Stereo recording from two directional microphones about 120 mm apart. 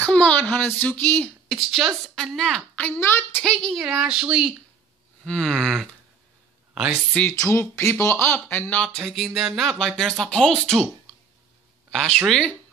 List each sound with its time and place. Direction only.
0.0 s speech: 10° left (ahead or behind)
1.5 s speech: centre (ahead or behind); by 3.4 s 20° left (ahead or behind)
3.4 s speech: 5° left (ahead or behind)
5.2 s speech: 5° left (ahead or behind)
6.7 s a sound: 5° right (ahead or behind)
7.2 s speech: 20° left (ahead or behind)
12.3 s speech: 10° left (ahead or behind)